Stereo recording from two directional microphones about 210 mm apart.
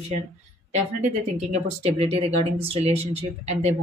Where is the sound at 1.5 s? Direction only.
30° right (ahead or behind).